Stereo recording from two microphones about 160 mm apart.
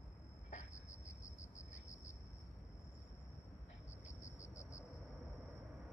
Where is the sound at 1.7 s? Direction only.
45° left (ahead or behind).